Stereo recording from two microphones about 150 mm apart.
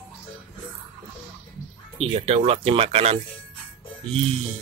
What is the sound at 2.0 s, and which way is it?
Speech, 45° right (ahead or behind).